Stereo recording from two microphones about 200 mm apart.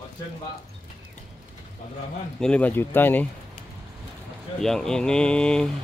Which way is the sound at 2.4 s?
5° left (ahead or behind).